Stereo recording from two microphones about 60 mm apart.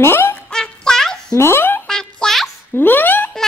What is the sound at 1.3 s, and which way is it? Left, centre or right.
Speech, left.